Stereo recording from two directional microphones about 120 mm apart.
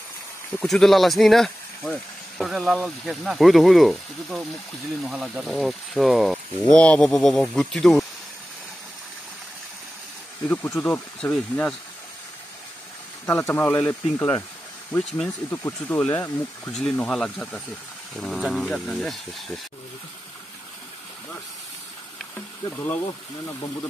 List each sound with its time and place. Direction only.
0.7 s speech: centre (ahead or behind)
10.4 s speech: 15° left (ahead or behind)
13.3 s speech: 20° left (ahead or behind)
15.0 s speech: 5° left (ahead or behind)
15.5 s speech: 20° left (ahead or behind); by 19.6 s centre (ahead or behind)
22.8 s speech: 20° left (ahead or behind)